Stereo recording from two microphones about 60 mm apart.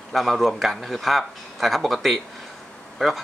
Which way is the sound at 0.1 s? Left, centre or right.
Centre.